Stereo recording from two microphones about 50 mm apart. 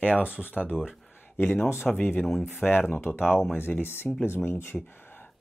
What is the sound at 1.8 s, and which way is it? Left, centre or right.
Speech, left.